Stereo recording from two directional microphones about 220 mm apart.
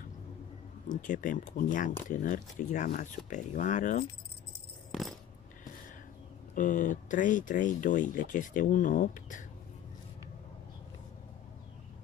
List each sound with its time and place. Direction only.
0.8 s speech: 35° left (ahead or behind)
6.5 s speech: 35° left (ahead or behind)